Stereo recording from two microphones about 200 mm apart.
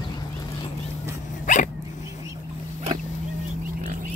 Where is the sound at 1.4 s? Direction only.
40° left (ahead or behind).